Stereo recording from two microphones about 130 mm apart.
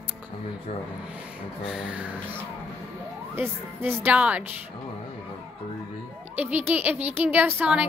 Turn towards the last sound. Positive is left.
turn(degrees=-10)  # may be behind; listen again after turning